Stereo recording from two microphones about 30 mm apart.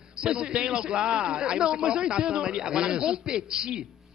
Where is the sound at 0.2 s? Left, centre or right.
Right.